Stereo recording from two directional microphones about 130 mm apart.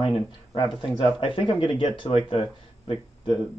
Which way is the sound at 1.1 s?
45° left (ahead or behind).